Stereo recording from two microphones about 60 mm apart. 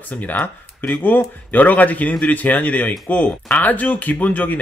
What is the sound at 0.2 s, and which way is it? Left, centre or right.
Speech, left.